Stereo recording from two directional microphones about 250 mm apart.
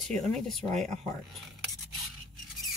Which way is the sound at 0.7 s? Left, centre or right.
Right.